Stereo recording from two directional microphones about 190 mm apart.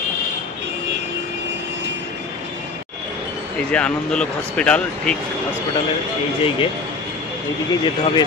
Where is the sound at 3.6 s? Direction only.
5° left (ahead or behind).